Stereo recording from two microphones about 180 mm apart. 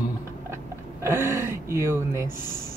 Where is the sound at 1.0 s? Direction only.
15° right (ahead or behind).